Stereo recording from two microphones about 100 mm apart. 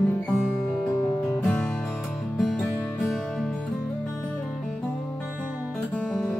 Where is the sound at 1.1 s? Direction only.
15° left (ahead or behind).